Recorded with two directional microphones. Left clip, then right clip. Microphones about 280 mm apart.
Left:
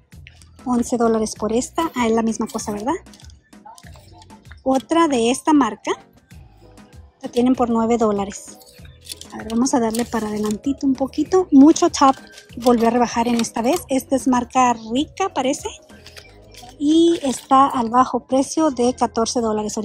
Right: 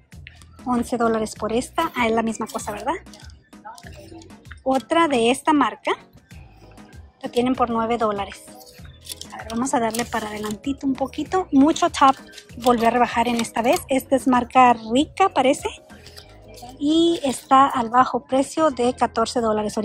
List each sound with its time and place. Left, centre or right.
0.7 s speech: centre
4.6 s speech: centre
7.2 s speech: centre
9.5 s speech: centre
16.8 s speech: centre